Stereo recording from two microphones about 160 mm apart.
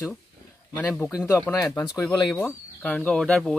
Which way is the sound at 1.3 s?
15° left (ahead or behind).